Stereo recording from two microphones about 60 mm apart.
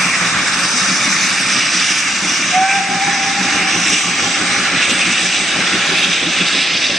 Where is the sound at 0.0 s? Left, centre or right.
Centre.